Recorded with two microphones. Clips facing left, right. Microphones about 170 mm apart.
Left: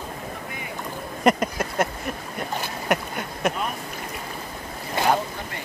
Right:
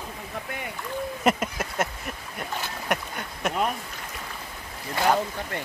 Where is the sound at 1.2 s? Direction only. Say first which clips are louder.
Left 5 dB; 5° right (ahead or behind).